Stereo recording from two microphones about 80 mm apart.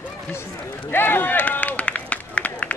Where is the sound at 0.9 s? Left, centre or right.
Left.